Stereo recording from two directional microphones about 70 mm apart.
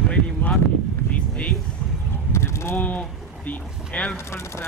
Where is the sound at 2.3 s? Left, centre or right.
Left.